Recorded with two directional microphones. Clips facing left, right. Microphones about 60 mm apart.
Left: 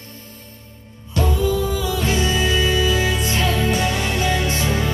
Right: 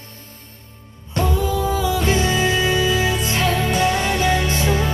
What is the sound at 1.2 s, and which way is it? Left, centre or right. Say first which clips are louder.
Music: even; right.